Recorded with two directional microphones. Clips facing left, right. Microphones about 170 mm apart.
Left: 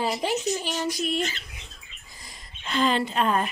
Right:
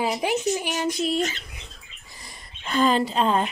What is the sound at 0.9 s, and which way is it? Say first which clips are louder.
Speech: right 3 dB; 35° right (ahead or behind).